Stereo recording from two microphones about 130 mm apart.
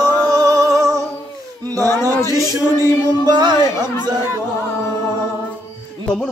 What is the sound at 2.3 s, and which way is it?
Chant, 25° right (ahead or behind).